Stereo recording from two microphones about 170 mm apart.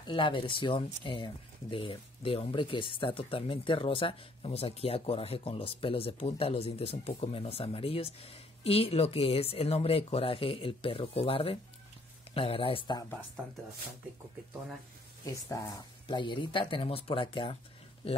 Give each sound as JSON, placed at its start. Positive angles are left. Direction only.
{"t": 0.0, "sound": "speech", "side_deg": 30}
{"t": 15.2, "sound": "speech", "side_deg": 20}